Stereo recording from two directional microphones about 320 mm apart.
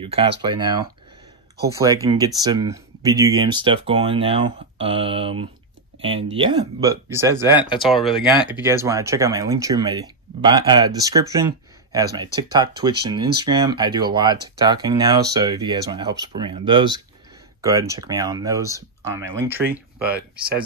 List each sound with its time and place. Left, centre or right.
0.0 s speech: centre